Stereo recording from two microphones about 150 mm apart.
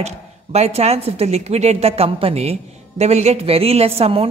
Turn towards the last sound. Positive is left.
turn(degrees=-40)  # may be behind; listen again after turning